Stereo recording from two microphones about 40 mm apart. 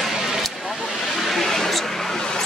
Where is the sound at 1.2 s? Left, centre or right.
Centre.